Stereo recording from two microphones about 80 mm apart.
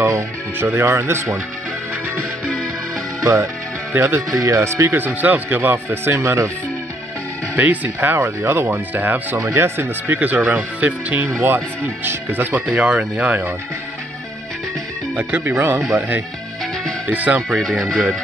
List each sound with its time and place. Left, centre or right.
0.0 s music: right
0.7 s speech: right
3.2 s music: right
4.0 s speech: right
7.5 s speech: right
9.4 s speech: right
10.1 s speech: right
11.2 s speech: right
15.1 s speech: centre
17.1 s speech: centre
17.5 s speech: centre